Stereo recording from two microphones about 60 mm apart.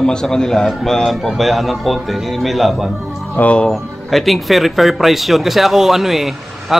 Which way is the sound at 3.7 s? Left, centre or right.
Centre.